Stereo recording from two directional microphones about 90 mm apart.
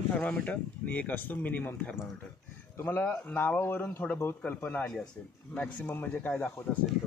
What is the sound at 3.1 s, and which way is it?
Speech, 20° left (ahead or behind).